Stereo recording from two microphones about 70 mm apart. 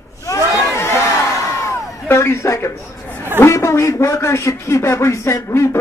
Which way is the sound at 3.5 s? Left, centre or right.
Left.